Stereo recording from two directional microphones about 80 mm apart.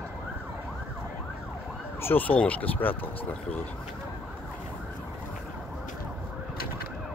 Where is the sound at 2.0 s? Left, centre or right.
Left.